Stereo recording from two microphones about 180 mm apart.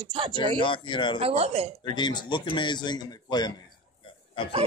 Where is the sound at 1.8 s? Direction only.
25° left (ahead or behind).